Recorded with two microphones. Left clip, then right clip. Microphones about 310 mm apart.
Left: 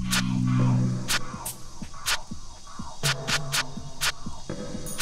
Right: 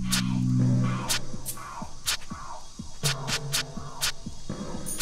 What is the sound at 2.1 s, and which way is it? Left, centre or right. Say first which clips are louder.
Music: left 2 dB; centre.